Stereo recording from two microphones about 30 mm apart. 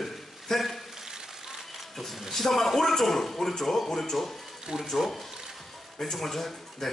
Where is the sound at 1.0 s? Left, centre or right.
Centre.